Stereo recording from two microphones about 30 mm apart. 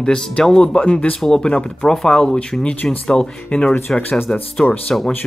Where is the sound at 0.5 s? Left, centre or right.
Left.